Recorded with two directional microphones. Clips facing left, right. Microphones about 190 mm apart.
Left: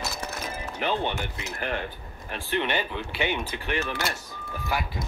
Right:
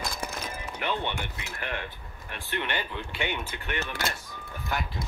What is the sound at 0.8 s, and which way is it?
Speech, 35° left (ahead or behind).